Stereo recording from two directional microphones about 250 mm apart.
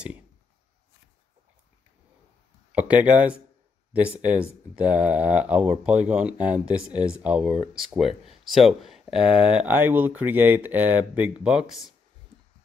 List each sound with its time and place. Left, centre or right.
2.7 s speech: centre